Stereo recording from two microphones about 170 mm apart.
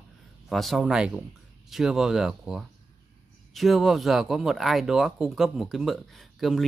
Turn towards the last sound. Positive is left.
turn(degrees=0)  # may be behind; listen again after turning